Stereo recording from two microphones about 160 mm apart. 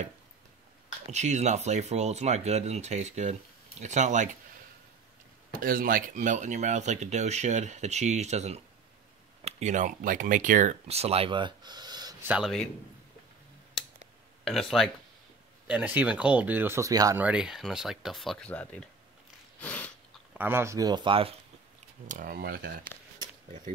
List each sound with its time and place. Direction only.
1.1 s speech: 45° right (ahead or behind)
5.5 s speech: 60° right (ahead or behind); by 12.2 s 25° right (ahead or behind)
12.2 s speech: 10° right (ahead or behind)
14.4 s speech: centre (ahead or behind); by 17.2 s 20° right (ahead or behind)
17.2 s speech: 5° right (ahead or behind); by 18.9 s 10° left (ahead or behind)
19.6 s biting: 10° left (ahead or behind)
20.3 s speech: 15° right (ahead or behind); by 21.4 s 35° right (ahead or behind)
22.0 s speech: 55° right (ahead or behind)